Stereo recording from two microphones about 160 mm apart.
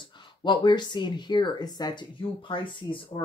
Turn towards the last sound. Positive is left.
turn(degrees=30)  # may be behind; listen again after turning